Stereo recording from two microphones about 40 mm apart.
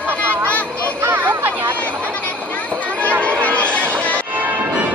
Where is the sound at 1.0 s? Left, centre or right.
Right.